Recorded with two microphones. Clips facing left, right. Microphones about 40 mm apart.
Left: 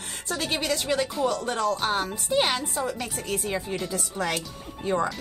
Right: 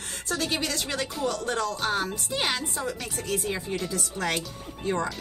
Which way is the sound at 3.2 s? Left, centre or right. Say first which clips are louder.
Right 3 dB; left.